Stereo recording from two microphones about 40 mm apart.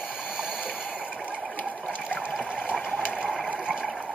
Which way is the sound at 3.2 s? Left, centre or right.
Centre.